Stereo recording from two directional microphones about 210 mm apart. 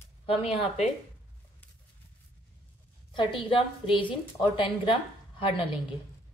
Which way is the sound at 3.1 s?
25° left (ahead or behind).